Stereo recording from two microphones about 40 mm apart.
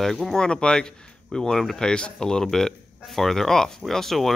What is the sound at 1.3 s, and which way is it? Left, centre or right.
Speech, centre.